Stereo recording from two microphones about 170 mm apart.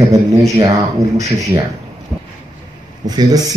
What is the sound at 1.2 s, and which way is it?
Speech, 40° right (ahead or behind).